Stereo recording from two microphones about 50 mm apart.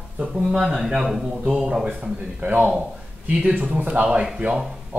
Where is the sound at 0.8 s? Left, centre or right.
Centre.